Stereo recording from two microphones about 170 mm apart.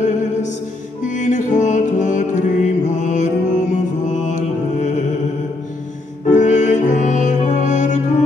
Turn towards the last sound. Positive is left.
turn(degrees=45)  # may be behind; listen again after turning